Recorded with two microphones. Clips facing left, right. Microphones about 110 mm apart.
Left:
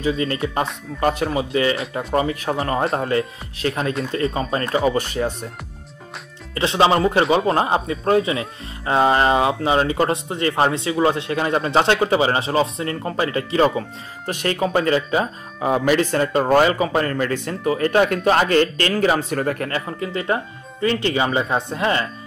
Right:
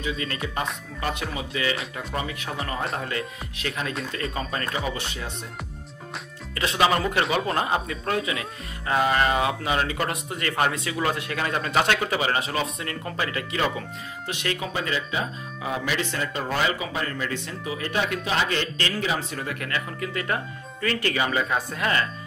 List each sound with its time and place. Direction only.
0.0 s speech: 30° left (ahead or behind)
6.5 s speech: 30° left (ahead or behind)